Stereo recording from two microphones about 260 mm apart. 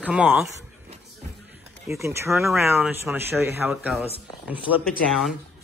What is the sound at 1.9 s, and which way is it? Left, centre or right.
Speech, centre.